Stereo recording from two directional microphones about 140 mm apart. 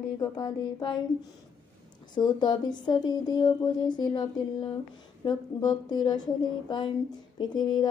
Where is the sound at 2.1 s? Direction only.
30° left (ahead or behind).